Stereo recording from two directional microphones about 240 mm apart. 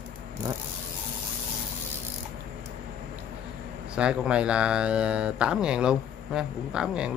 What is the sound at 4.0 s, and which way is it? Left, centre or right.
Speech, centre.